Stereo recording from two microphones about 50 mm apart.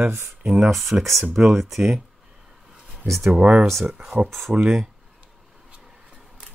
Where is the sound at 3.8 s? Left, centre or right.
Centre.